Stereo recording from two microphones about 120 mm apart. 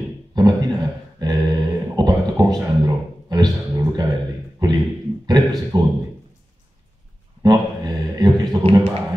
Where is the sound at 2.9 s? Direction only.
35° right (ahead or behind).